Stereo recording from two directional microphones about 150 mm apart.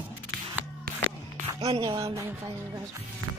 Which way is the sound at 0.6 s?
10° right (ahead or behind).